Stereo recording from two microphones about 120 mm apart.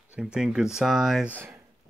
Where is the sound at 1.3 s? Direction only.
15° right (ahead or behind).